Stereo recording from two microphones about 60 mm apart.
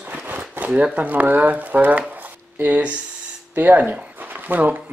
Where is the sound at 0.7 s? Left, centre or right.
Right.